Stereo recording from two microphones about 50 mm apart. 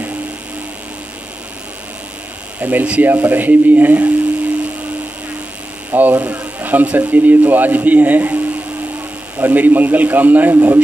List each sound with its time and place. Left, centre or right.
2.6 s speech: right
5.9 s speech: right
9.4 s speech: right
10.5 s a man's voice: right